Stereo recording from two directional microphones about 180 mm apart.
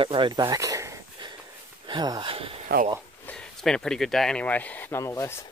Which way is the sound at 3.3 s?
5° left (ahead or behind).